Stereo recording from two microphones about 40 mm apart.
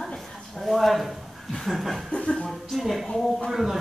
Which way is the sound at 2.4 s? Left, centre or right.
Centre.